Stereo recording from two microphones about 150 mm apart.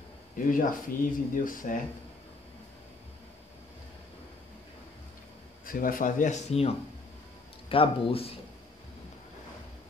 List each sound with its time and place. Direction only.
0.5 s speech: 65° left (ahead or behind)
5.7 s speech: 65° left (ahead or behind); by 6.7 s 45° left (ahead or behind)
7.7 s speech: 35° left (ahead or behind)